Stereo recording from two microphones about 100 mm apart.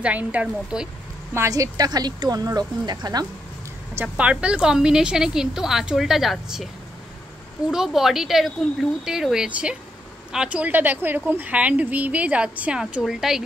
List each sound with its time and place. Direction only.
0.0 s a woman's voice: 15° right (ahead or behind)
1.5 s speech: 40° right (ahead or behind)
3.9 s a woman's voice: 15° right (ahead or behind)
7.7 s a woman's voice: 5° right (ahead or behind)